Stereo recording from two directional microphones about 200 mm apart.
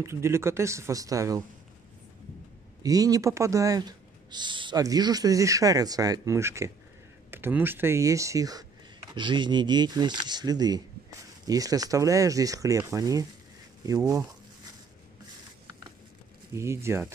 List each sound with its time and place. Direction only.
0.0 s speech: 15° right (ahead or behind)
2.8 s speech: 20° right (ahead or behind)
16.5 s speech: 15° right (ahead or behind)